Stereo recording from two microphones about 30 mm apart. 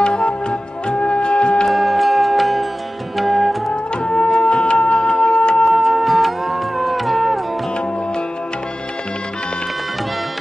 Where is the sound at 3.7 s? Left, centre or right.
Left.